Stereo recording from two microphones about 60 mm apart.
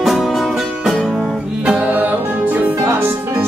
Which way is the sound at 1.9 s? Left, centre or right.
Right.